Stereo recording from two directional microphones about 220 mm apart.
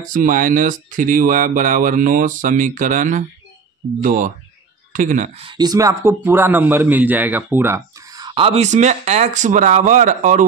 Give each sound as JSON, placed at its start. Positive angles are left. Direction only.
{"t": 0.0, "sound": "speech", "side_deg": -35}
{"t": 5.5, "sound": "a man's voice", "side_deg": -20}